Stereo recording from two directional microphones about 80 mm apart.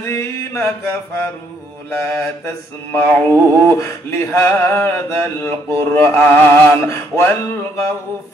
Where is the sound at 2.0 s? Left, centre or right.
Left.